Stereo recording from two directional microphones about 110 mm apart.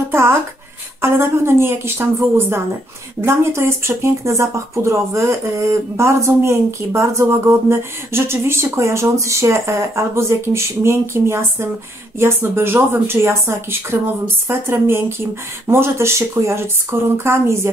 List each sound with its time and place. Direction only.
0.1 s writing: 20° right (ahead or behind)
1.0 s speech: 20° right (ahead or behind)